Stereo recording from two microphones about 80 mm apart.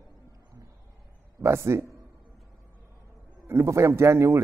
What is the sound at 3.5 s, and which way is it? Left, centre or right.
Speech, right.